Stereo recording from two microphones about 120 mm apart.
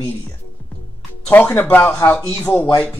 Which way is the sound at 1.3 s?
15° left (ahead or behind).